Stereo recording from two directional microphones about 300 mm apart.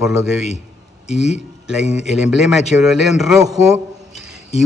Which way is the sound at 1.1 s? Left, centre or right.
Left.